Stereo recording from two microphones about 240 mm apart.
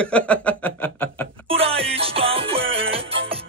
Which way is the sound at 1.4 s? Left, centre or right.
Right.